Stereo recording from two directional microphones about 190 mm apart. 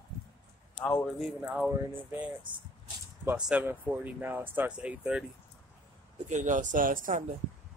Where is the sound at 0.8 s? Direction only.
5° left (ahead or behind).